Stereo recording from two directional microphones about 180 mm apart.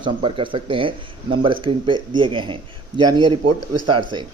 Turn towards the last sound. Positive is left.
turn(degrees=-25)  # may be behind; listen again after turning